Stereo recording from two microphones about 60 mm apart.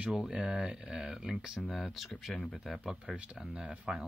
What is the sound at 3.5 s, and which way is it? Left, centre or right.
Speech, centre.